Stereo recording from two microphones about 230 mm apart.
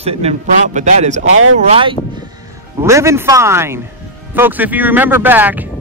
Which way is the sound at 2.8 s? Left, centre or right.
Centre.